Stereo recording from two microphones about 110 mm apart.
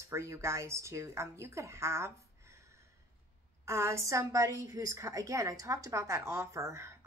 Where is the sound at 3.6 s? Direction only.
25° right (ahead or behind).